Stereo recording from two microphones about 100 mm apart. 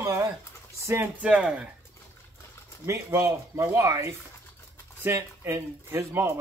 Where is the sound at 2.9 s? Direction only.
30° right (ahead or behind).